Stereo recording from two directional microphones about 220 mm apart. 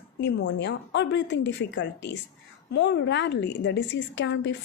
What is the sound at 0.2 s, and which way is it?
A woman's voice, 50° left (ahead or behind).